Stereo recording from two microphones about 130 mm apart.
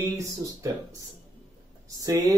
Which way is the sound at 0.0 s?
25° right (ahead or behind).